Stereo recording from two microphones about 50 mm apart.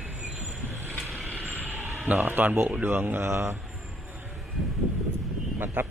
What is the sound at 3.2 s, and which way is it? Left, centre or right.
Speech, right.